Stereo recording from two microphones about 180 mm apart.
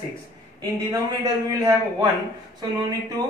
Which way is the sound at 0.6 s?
20° right (ahead or behind).